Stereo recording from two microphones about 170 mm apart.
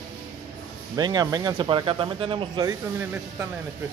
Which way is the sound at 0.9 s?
25° right (ahead or behind).